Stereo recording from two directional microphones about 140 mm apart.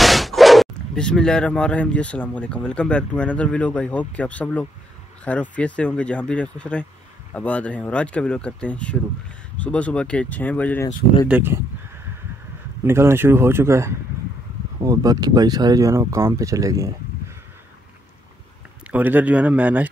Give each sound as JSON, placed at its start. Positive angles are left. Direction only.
{"t": 0.0, "sound": "speech", "side_deg": 0}
{"t": 11.2, "sound": "speech", "side_deg": -15}
{"t": 12.8, "sound": "speech", "side_deg": -15}
{"t": 18.9, "sound": "speech", "side_deg": -10}